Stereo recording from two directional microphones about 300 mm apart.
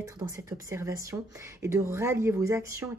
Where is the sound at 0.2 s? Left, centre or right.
Centre.